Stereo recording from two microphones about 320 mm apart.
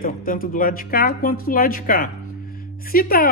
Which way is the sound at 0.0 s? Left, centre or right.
Left.